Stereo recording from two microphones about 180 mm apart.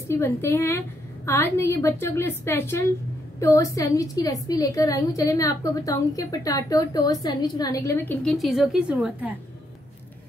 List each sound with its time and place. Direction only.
0.1 s a woman's voice: 15° left (ahead or behind); by 9.3 s 5° right (ahead or behind)